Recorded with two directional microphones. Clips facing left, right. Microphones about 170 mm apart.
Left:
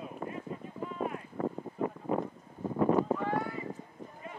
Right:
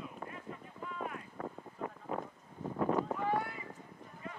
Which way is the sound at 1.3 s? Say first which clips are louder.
Left 9 dB; 35° left (ahead or behind).